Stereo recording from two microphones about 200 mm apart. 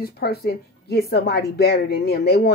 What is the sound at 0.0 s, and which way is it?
A woman's voice, 50° left (ahead or behind).